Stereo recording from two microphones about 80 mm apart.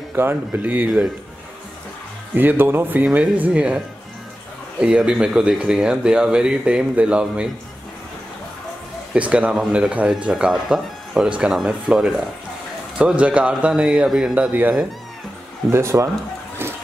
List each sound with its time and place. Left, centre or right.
0.1 s speech: right
2.3 s speech: right
9.1 s speech: centre
14.5 s speech: right
15.7 s speech: right